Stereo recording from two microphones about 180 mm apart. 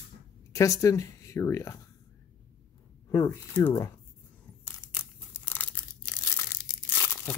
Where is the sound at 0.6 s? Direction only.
20° left (ahead or behind).